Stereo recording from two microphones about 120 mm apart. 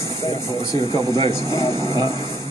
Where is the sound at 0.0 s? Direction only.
25° left (ahead or behind).